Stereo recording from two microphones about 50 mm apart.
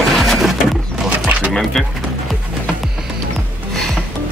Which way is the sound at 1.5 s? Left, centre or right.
Centre.